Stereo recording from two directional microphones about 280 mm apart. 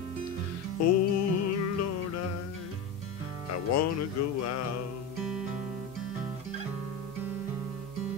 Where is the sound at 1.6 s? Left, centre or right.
Left.